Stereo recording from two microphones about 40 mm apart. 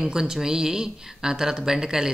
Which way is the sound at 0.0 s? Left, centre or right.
Centre.